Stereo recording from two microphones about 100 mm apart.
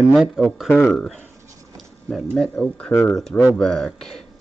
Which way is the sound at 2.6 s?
10° left (ahead or behind).